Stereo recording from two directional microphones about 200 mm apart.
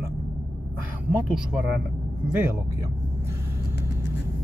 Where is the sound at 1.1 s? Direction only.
5° right (ahead or behind).